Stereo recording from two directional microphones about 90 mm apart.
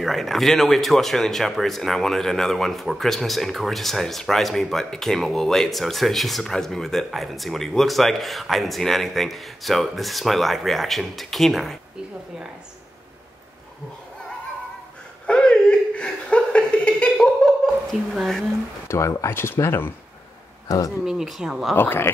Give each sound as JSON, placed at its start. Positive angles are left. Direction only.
{"t": 0.0, "sound": "speech", "side_deg": 0}
{"t": 15.2, "sound": "chuckle", "side_deg": 10}
{"t": 18.1, "sound": "speech", "side_deg": 0}
{"t": 18.9, "sound": "speech", "side_deg": 30}
{"t": 20.6, "sound": "speech", "side_deg": 40}
{"t": 21.0, "sound": "speech", "side_deg": -5}
{"t": 21.7, "sound": "speech", "side_deg": 25}